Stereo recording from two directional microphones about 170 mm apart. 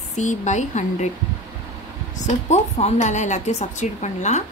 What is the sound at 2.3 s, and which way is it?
Speech, 40° left (ahead or behind).